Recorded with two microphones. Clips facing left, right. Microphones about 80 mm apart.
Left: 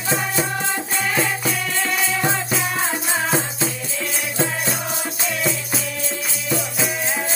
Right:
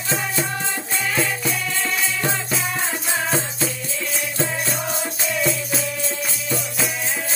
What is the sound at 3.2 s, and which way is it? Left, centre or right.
Music, centre.